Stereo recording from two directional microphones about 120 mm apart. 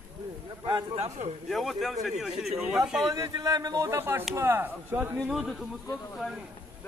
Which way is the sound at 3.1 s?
30° right (ahead or behind).